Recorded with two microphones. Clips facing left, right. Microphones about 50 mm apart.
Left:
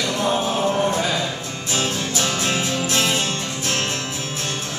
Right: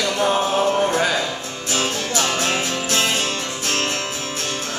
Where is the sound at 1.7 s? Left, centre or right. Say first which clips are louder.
Right 1 dB; right.